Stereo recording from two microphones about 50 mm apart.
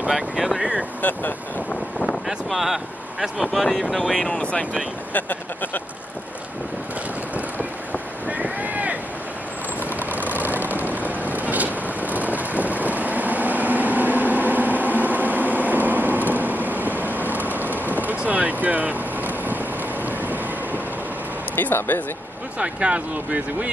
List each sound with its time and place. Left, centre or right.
0.1 s speech: centre
1.0 s speech: left
2.0 s speech: centre
4.4 s speech: left
5.1 s speech: left
8.3 s boat: right
9.8 s vehicle: right
21.5 s speech: left
22.6 s speech: right